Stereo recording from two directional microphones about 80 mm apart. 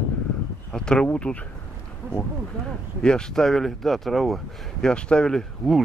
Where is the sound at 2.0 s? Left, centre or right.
Right.